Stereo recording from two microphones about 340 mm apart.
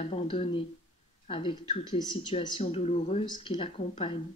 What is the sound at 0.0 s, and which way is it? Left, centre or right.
Speech, centre.